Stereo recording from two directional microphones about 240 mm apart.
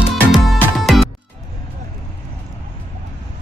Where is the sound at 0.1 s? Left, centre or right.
Centre.